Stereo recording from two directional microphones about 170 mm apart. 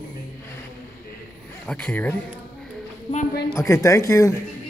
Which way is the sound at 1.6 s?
5° left (ahead or behind).